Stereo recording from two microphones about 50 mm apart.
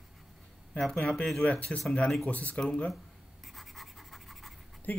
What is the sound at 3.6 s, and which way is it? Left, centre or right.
Scratch, centre.